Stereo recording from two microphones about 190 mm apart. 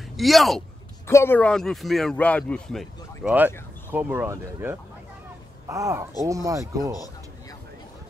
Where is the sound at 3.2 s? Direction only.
10° right (ahead or behind).